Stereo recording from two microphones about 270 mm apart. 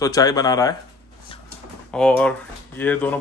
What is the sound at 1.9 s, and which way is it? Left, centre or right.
Speech, centre.